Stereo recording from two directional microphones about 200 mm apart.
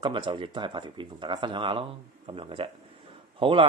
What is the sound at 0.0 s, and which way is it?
Speech, 25° right (ahead or behind).